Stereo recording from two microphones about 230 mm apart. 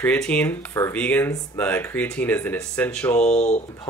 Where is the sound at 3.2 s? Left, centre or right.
Left.